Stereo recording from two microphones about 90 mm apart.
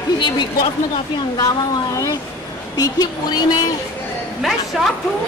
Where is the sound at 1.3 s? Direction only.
45° left (ahead or behind).